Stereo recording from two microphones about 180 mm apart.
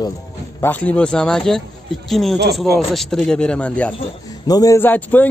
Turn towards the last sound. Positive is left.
turn(degrees=10)  # may be behind; listen again after turning